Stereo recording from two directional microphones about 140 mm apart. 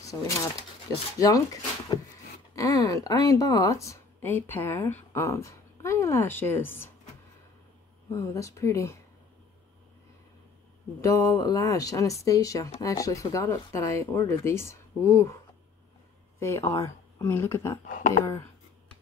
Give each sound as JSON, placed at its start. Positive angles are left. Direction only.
{"t": 0.0, "sound": "speech", "side_deg": 25}
{"t": 8.1, "sound": "speech", "side_deg": 20}
{"t": 11.0, "sound": "speech", "side_deg": 25}
{"t": 16.3, "sound": "speech", "side_deg": 20}